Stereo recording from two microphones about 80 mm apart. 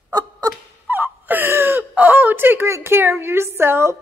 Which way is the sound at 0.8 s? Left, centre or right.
Right.